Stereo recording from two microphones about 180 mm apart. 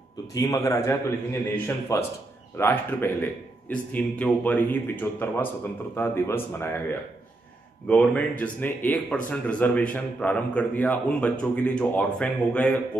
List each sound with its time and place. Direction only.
0.3 s a man's voice: 20° left (ahead or behind)